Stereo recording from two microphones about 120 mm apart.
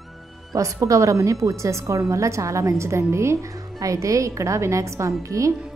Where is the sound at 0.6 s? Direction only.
25° right (ahead or behind).